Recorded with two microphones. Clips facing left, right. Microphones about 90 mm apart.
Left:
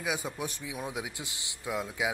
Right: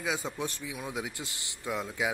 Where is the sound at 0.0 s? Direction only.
15° left (ahead or behind).